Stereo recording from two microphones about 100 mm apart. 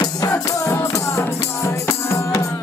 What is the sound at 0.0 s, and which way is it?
Music, 35° left (ahead or behind).